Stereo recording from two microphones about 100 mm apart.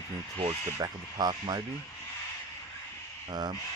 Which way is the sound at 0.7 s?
40° right (ahead or behind).